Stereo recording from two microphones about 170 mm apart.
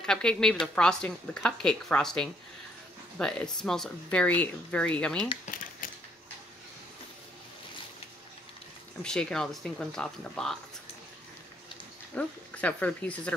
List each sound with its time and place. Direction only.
0.0 s speech: 5° left (ahead or behind)
5.4 s a sound: 55° left (ahead or behind)
9.0 s speech: 5° left (ahead or behind)
12.2 s speech: 10° left (ahead or behind)